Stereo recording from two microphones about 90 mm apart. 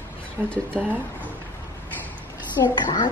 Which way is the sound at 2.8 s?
55° left (ahead or behind).